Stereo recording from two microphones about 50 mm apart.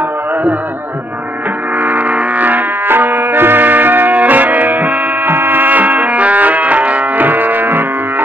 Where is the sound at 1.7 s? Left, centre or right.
Right.